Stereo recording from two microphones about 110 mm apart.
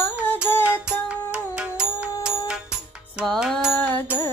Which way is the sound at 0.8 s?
10° right (ahead or behind).